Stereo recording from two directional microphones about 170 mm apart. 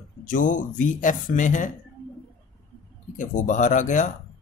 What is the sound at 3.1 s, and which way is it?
Speech, 50° left (ahead or behind).